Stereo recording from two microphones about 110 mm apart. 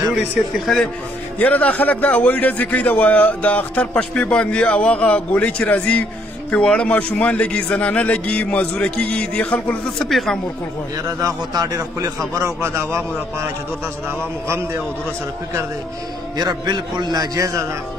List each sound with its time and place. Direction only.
0.4 s speech: 5° right (ahead or behind)
1.4 s a man's voice: 15° left (ahead or behind)
11.1 s a man's voice: 30° right (ahead or behind)
16.3 s a man's voice: 35° right (ahead or behind)